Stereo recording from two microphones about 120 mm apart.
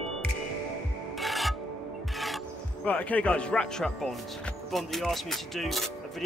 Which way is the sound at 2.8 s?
10° left (ahead or behind).